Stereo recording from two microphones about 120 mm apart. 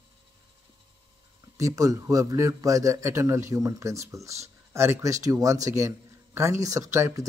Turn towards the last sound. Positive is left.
turn(degrees=-25)  # may be behind; listen again after turning